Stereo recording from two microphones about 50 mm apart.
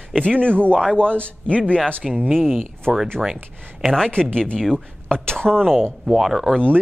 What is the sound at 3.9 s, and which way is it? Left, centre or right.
Speech, centre.